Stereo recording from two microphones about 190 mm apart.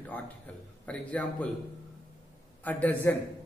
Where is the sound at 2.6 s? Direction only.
10° left (ahead or behind).